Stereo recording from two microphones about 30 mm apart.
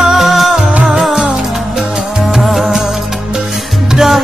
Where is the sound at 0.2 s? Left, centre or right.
Centre.